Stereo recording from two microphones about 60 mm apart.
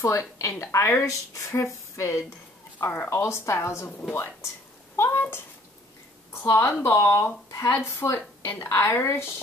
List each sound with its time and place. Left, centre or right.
0.0 s speech: left
2.8 s speech: left
3.1 s speech: left
4.9 s a sound: left
6.4 s speech: left